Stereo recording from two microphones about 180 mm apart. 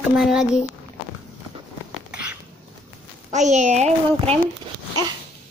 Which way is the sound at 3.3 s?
40° right (ahead or behind).